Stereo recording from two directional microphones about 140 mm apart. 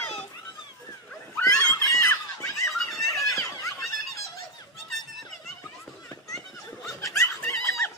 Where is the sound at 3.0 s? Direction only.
25° left (ahead or behind).